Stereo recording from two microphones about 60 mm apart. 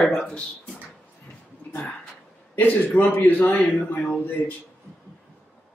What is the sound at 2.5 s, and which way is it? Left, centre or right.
A man's voice, left.